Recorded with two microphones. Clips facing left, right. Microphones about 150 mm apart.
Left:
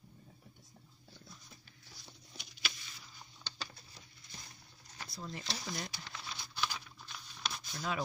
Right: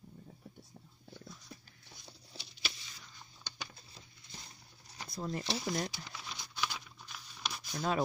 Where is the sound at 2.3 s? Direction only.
30° right (ahead or behind).